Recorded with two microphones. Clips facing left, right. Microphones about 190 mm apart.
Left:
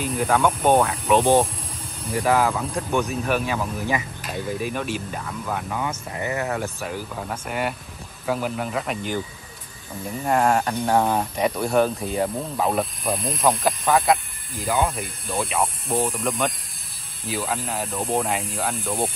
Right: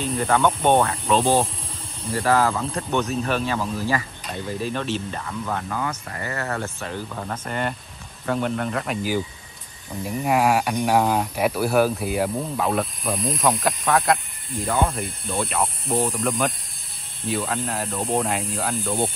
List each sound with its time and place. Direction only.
0.0 s speech: 5° left (ahead or behind)
1.1 s speech: 20° left (ahead or behind)
6.8 s speech: 5° left (ahead or behind)
10.2 s speech: centre (ahead or behind)
10.6 s speech: 15° right (ahead or behind)
11.0 s speech: centre (ahead or behind)